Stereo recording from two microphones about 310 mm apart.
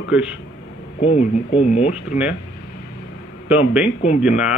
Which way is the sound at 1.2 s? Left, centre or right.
Centre.